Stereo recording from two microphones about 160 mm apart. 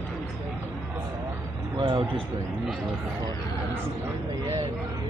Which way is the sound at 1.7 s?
30° right (ahead or behind).